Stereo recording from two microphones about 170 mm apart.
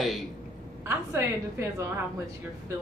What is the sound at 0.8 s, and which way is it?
A woman's voice, 15° right (ahead or behind).